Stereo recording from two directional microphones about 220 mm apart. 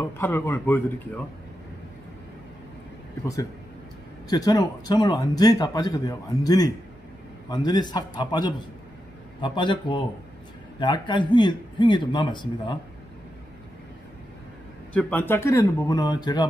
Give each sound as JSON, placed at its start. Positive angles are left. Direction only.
{"t": 0.0, "sound": "speech", "side_deg": 10}
{"t": 4.3, "sound": "a man's voice", "side_deg": 20}
{"t": 15.0, "sound": "speech", "side_deg": 5}